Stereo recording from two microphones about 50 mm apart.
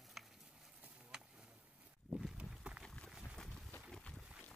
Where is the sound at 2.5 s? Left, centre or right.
Right.